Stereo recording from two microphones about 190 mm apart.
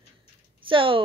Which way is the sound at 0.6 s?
25° right (ahead or behind).